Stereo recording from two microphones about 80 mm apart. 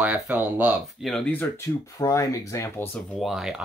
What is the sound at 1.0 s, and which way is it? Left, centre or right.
Speech, centre.